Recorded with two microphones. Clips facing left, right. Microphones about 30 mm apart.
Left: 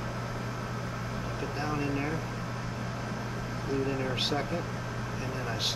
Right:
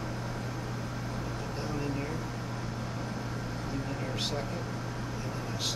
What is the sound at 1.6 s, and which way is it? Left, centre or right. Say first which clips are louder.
Speech: left 3 dB; left.